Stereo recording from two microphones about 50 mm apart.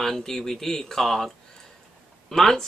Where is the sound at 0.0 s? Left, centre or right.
Centre.